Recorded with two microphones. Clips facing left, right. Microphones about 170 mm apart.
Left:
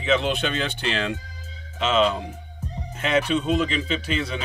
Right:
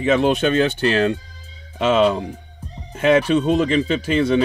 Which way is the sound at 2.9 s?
50° right (ahead or behind).